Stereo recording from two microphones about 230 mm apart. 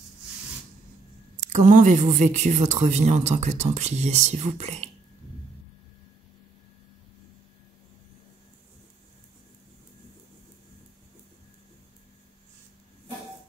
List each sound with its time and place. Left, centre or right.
1.3 s speech: right